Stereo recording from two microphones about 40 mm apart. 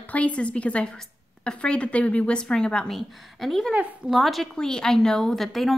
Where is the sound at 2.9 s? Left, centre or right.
Centre.